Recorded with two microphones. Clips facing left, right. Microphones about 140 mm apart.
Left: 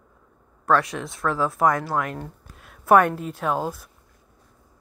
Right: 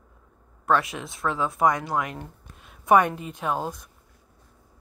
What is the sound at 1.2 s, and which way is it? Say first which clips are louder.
Speech: left 2 dB; 15° right (ahead or behind).